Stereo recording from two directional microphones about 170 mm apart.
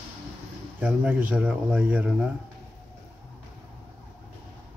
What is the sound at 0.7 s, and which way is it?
Speech, 10° right (ahead or behind).